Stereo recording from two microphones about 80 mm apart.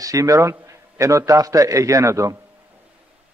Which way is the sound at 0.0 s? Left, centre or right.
Right.